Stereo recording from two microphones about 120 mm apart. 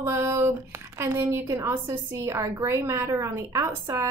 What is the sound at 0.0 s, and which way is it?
A woman's voice, 25° right (ahead or behind).